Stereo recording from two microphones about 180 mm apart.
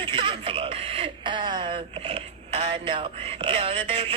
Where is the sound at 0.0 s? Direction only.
30° right (ahead or behind).